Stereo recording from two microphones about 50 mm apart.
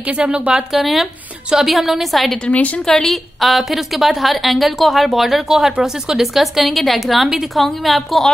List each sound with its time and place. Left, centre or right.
0.2 s speech: centre
0.7 s a woman's voice: centre